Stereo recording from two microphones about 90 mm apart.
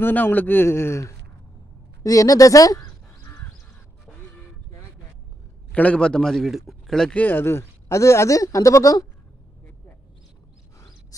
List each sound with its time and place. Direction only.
0.0 s a man's voice: 20° left (ahead or behind)
2.0 s crow: 40° left (ahead or behind)
5.7 s a man's voice: 15° left (ahead or behind)
7.2 s speech: 25° left (ahead or behind)